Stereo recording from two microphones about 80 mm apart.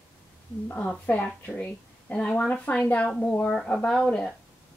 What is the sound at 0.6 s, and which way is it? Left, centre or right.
A woman's voice, left.